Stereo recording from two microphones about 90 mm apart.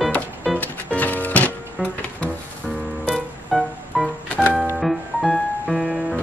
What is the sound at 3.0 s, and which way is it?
Music, centre (ahead or behind).